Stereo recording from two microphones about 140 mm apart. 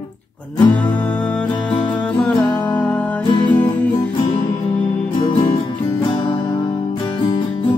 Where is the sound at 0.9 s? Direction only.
10° left (ahead or behind).